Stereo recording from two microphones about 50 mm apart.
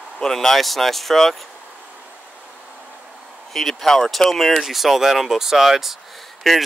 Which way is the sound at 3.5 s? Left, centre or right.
Centre.